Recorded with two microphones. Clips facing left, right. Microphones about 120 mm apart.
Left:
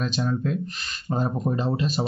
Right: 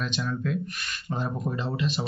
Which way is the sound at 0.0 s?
35° left (ahead or behind).